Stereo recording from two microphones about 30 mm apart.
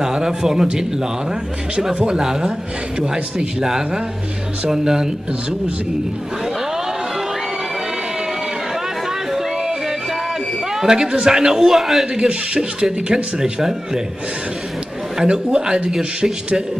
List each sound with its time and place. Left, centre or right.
0.0 s speech: right
1.8 s speech: centre
3.6 s speech: right
9.6 s music: right
10.7 s speech: centre
11.6 s a man's voice: centre
12.2 s speech: right
15.3 s speech: right